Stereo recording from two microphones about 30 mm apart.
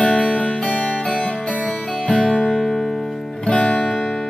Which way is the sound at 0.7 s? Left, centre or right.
Left.